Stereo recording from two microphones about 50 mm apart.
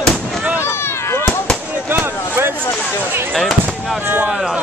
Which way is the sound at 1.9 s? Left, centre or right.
Right.